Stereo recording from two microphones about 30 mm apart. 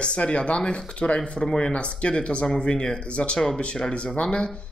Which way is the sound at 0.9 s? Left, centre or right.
Left.